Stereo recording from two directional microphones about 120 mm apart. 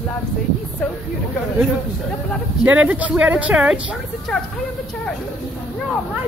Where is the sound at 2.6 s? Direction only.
10° right (ahead or behind).